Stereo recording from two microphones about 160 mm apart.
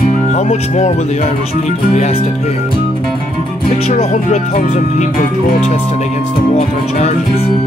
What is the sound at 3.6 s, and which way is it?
Speech, 40° left (ahead or behind).